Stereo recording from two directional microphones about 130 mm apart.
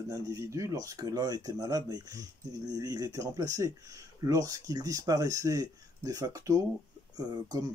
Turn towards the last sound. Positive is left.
turn(degrees=-30)  # may be behind; listen again after turning